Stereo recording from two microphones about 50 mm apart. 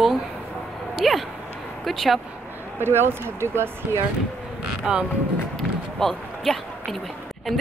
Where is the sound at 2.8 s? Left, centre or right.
Right.